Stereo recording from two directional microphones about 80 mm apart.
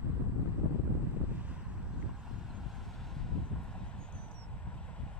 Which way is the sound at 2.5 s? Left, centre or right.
Centre.